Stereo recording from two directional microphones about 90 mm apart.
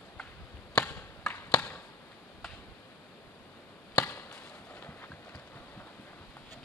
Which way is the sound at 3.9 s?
15° left (ahead or behind).